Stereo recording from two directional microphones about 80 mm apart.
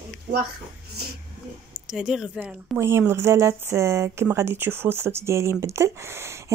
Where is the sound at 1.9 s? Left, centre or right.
Centre.